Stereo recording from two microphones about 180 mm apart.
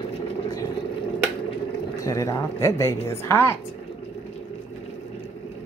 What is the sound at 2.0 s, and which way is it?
A woman's voice, 20° left (ahead or behind).